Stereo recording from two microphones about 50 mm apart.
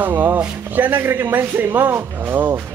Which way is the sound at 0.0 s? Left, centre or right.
Right.